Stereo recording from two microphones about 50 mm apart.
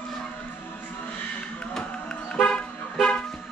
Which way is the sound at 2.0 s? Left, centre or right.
Left.